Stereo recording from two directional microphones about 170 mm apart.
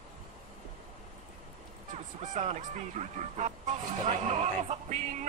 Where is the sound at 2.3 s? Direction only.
45° right (ahead or behind).